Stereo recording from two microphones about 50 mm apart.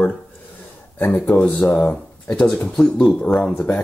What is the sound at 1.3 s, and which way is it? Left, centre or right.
Speech, left.